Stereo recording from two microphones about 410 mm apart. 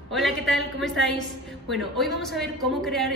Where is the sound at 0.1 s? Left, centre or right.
Centre.